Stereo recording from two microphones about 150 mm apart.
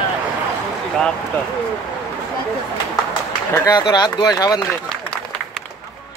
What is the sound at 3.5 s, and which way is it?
Speech, 25° left (ahead or behind).